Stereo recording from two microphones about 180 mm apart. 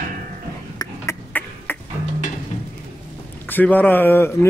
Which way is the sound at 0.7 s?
15° left (ahead or behind).